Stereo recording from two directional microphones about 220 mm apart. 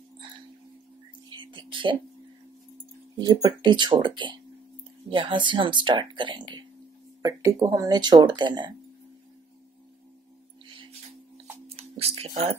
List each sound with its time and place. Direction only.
1.3 s whispering: 20° right (ahead or behind)
3.2 s speech: 20° right (ahead or behind)
11.7 s a sound: 25° right (ahead or behind)